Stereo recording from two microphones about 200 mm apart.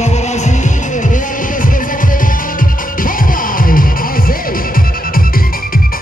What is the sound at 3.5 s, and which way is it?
Music, 45° left (ahead or behind).